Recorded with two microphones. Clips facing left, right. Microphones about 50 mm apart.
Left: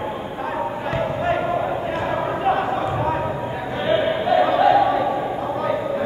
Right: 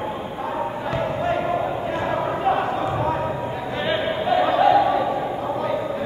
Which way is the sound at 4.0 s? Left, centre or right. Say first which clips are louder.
Left 2 dB; centre.